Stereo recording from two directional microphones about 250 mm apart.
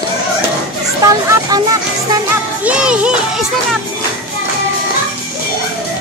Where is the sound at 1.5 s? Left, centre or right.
Centre.